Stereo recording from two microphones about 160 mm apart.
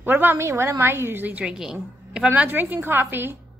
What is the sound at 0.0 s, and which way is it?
Speech, 10° right (ahead or behind).